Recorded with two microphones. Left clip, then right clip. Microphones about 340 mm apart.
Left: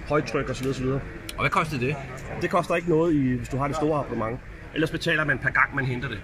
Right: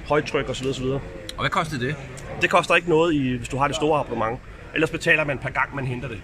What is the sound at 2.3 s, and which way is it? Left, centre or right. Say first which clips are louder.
Speech: right 6 dB; right.